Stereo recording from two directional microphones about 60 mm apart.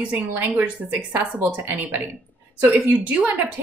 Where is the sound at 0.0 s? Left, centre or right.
Right.